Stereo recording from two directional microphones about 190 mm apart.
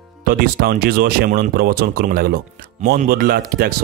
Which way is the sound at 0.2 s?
50° right (ahead or behind).